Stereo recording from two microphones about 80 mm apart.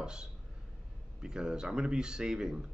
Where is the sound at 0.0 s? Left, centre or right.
Centre.